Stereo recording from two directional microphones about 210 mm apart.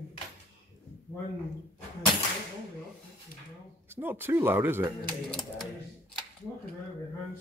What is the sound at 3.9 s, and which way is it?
Speech, 10° right (ahead or behind).